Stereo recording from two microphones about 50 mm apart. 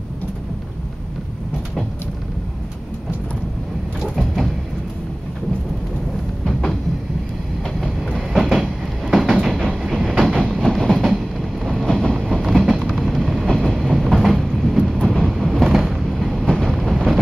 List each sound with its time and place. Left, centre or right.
4.0 s sliding door: centre
6.4 s music: centre
7.8 s train: centre
14.9 s vehicle: centre
16.1 s train: centre
16.4 s vehicle: centre
16.7 s vehicle: centre